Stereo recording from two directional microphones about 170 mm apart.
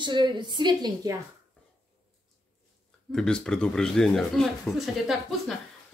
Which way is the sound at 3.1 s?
5° left (ahead or behind).